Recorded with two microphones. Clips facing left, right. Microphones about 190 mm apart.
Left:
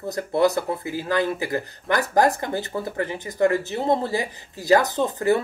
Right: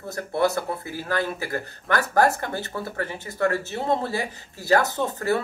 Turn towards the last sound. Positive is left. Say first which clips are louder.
# left 3 dB
turn(degrees=15)  # may be behind; listen again after turning